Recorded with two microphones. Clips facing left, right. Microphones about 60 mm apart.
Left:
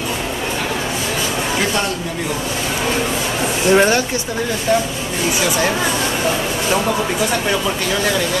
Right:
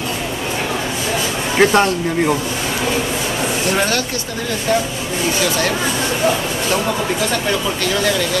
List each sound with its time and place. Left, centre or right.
1.6 s speech: right
3.7 s speech: centre